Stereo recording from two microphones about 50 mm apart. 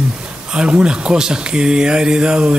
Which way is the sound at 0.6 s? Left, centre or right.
Right.